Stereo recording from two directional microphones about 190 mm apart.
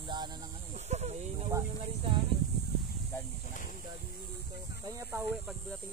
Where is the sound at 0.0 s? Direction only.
20° right (ahead or behind).